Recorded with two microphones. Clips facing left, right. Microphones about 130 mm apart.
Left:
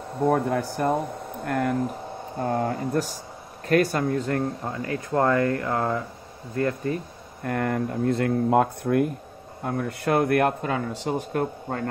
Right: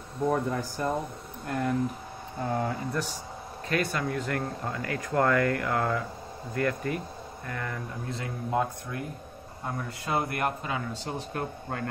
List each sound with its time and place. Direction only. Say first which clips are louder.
0.3 s speech: left 5 dB; 65° left (ahead or behind); by 7.0 s 30° left (ahead or behind)
7.4 s speech: left 11 dB; 55° left (ahead or behind)